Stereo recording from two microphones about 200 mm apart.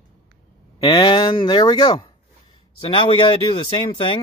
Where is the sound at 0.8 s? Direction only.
25° left (ahead or behind).